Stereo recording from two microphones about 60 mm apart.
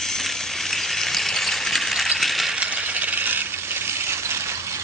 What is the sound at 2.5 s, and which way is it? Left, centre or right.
Coin, right.